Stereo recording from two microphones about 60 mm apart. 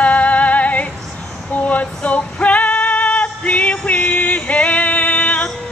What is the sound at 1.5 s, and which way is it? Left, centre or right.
Female singing, left.